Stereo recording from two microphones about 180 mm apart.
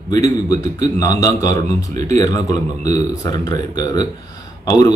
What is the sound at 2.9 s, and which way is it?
A man's voice, 20° left (ahead or behind).